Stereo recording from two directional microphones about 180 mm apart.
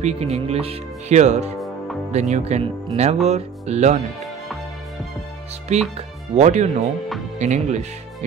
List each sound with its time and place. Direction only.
0.0 s speech: 35° right (ahead or behind)
5.9 s speech: 35° right (ahead or behind)